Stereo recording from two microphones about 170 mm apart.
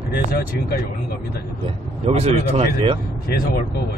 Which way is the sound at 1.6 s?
35° right (ahead or behind).